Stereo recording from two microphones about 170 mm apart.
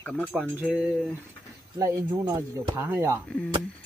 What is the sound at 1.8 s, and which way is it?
Speech, 20° right (ahead or behind).